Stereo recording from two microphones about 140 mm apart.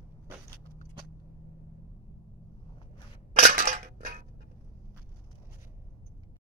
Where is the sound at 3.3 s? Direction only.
65° right (ahead or behind).